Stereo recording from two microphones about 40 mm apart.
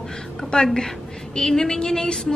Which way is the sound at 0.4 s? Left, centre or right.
Centre.